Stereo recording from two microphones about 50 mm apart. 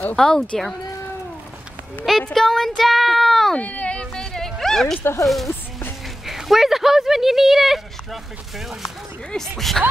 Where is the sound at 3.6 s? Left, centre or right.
Left.